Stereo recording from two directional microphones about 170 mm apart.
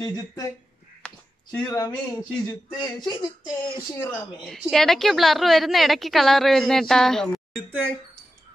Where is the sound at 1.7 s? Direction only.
20° left (ahead or behind).